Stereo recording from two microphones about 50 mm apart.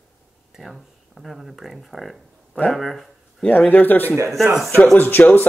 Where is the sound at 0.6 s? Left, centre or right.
Centre.